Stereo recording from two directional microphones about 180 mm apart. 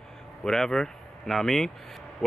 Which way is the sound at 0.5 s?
Centre (ahead or behind).